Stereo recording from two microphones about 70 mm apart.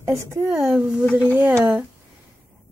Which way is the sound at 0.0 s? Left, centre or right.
Right.